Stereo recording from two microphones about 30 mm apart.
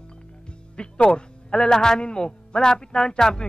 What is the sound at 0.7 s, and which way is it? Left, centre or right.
A man's voice, left.